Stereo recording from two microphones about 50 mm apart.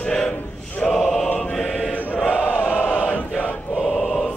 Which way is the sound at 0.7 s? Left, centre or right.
Left.